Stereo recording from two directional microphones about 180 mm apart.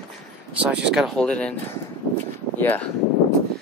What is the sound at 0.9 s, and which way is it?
Speech, centre (ahead or behind).